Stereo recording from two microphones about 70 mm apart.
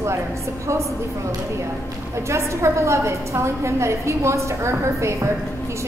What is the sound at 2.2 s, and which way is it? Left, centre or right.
A woman's voice, right.